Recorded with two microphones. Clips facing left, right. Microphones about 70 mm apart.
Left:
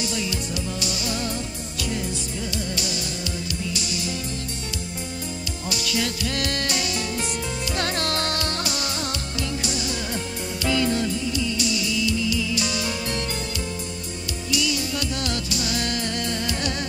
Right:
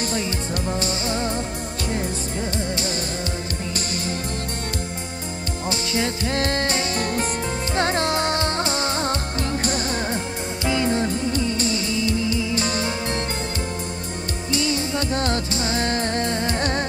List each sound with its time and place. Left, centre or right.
0.0 s music: right
5.7 s music: right
10.6 s music: right
14.5 s music: right